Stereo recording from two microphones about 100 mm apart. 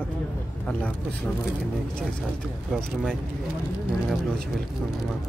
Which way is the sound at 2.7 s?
Centre (ahead or behind).